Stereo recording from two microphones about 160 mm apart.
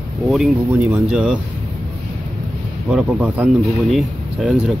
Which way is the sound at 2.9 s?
5° right (ahead or behind).